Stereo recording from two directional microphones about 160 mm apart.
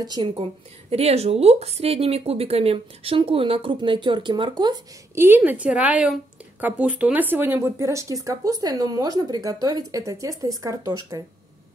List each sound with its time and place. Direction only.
0.0 s a woman's voice: 25° right (ahead or behind)
5.1 s a woman's voice: 15° right (ahead or behind)